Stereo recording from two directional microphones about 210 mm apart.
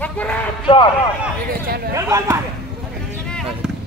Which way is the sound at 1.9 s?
15° right (ahead or behind).